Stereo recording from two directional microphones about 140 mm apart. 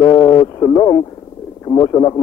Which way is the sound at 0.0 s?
30° left (ahead or behind).